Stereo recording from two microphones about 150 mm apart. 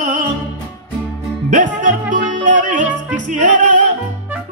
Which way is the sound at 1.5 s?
60° right (ahead or behind).